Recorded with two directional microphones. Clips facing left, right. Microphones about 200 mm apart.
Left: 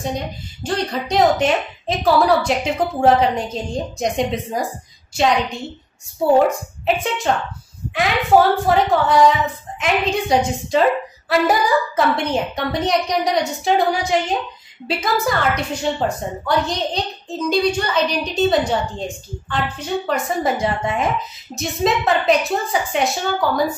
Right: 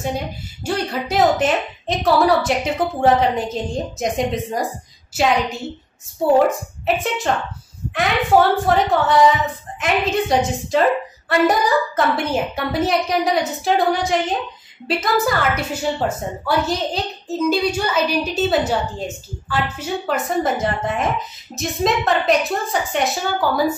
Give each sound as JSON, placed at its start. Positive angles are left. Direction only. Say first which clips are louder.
{"t": 0.7, "sound": "a woman's voice", "louder": "even", "side_deg": -5}
{"t": 7.0, "sound": "a woman's voice", "louder": "left 1 dB", "side_deg": 0}